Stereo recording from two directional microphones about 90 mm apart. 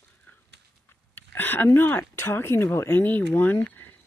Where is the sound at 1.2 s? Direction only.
20° left (ahead or behind).